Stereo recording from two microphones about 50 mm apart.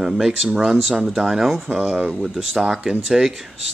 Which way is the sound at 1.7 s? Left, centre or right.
Centre.